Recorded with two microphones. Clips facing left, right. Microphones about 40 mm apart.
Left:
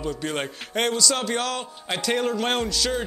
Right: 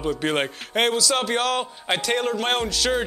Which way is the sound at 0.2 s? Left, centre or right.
Right.